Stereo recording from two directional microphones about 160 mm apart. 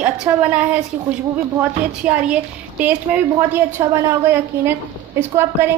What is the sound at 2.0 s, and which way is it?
A woman's voice, 5° right (ahead or behind).